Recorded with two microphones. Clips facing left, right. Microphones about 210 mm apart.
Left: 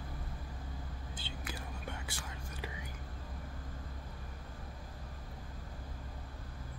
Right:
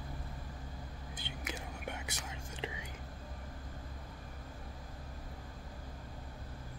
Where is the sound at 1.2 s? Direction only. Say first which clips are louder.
Right 2 dB; 20° right (ahead or behind).